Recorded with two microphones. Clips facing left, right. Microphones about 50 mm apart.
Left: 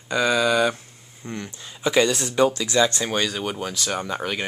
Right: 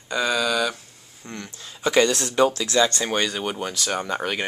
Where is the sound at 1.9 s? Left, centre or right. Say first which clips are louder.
Right 1 dB; centre.